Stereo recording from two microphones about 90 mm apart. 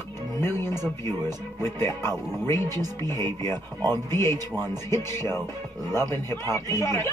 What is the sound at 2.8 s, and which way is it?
Speech, 45° right (ahead or behind).